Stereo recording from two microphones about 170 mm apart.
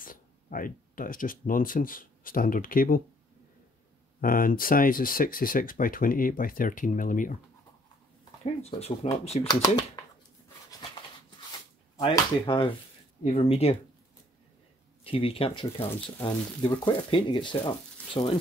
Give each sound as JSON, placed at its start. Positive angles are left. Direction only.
{"t": 0.0, "sound": "speech", "side_deg": 55}
{"t": 4.2, "sound": "speech", "side_deg": 55}
{"t": 8.6, "sound": "speech", "side_deg": 35}
{"t": 9.5, "sound": "speech", "side_deg": 25}
{"t": 12.0, "sound": "speech", "side_deg": 30}
{"t": 15.0, "sound": "speech", "side_deg": 30}